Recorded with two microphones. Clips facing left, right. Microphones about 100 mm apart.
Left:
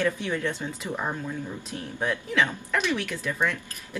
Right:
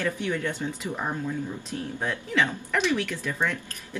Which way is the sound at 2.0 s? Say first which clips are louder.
Left 1 dB; centre (ahead or behind).